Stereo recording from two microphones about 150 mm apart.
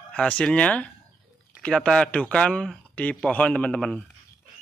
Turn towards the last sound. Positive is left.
turn(degrees=5)  # may be behind; listen again after turning